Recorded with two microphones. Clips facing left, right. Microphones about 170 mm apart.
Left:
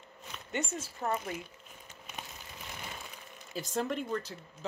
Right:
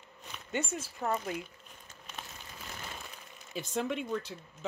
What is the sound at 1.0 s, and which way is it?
Speech, 5° left (ahead or behind).